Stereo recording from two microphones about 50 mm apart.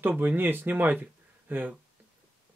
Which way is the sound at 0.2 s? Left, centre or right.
Right.